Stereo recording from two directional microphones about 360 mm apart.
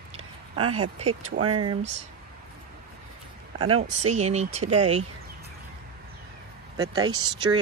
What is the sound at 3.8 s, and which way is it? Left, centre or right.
Speech, centre.